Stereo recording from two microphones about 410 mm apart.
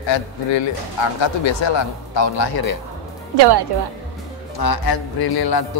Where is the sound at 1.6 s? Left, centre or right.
Left.